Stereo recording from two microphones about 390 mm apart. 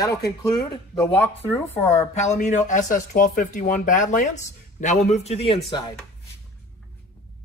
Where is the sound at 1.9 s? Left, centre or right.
Centre.